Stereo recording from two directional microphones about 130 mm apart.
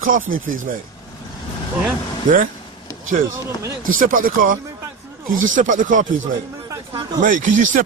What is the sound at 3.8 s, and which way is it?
Speech, 90° right.